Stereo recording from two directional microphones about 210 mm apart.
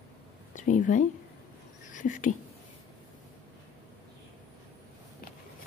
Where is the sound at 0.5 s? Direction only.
35° left (ahead or behind).